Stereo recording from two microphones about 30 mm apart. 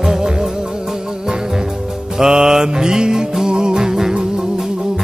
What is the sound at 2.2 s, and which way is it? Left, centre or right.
Music, right.